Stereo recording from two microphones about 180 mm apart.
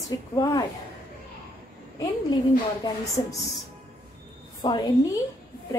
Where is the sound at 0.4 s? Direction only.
20° left (ahead or behind).